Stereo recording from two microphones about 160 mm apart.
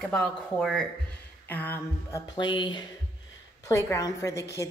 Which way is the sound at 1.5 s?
10° left (ahead or behind).